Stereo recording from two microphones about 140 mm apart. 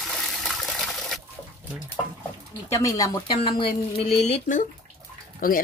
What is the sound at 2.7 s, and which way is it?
Speech, 20° left (ahead or behind).